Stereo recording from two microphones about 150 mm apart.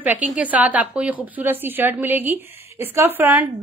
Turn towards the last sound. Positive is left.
turn(degrees=-15)  # may be behind; listen again after turning